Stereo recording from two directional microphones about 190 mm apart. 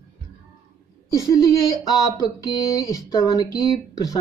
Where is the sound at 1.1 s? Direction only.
20° left (ahead or behind).